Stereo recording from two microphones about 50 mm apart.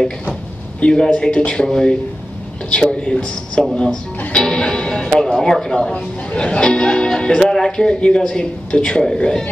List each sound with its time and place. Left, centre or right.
0.3 s a sound: left
1.0 s speech: centre
4.3 s music: centre
5.2 s speech: centre
6.3 s speech: left